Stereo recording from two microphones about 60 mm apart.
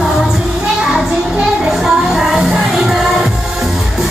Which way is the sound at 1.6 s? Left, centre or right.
Centre.